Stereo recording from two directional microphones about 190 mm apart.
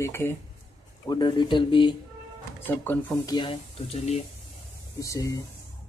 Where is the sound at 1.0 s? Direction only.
25° left (ahead or behind).